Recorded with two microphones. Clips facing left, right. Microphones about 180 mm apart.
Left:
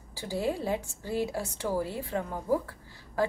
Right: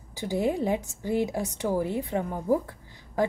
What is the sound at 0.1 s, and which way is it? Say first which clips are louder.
A woman's voice: right 4 dB; 15° right (ahead or behind).